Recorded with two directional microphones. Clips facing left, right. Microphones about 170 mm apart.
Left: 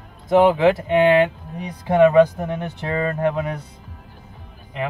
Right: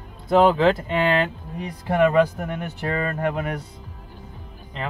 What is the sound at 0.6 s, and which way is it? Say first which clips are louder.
Speech: left 4 dB; 15° left (ahead or behind).